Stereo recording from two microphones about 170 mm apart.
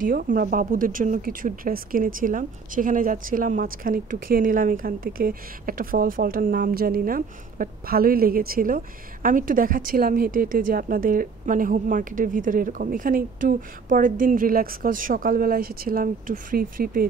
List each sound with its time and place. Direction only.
0.0 s speech: 55° right (ahead or behind)